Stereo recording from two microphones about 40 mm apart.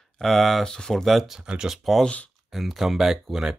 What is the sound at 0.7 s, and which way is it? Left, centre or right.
Speech, centre.